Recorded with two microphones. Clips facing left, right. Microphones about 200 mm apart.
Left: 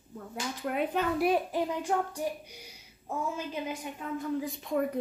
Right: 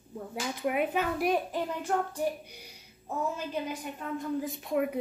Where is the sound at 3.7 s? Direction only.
Centre (ahead or behind).